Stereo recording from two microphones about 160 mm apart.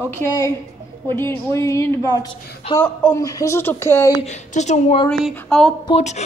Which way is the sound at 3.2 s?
20° left (ahead or behind).